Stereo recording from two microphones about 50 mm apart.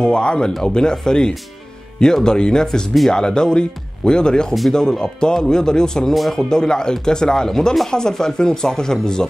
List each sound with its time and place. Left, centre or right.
0.0 s speech: centre
6.1 s speech: centre
6.5 s speech: centre